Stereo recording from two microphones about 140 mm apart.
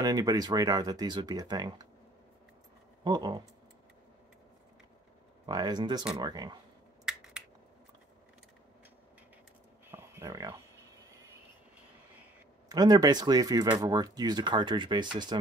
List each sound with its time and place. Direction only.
0.0 s speech: 30° right (ahead or behind)
3.0 s speech: 30° right (ahead or behind)
5.5 s speech: 30° right (ahead or behind)
7.1 s finger snapping: 5° right (ahead or behind)
9.8 s a sound: 15° right (ahead or behind)
12.6 s speech: 30° right (ahead or behind)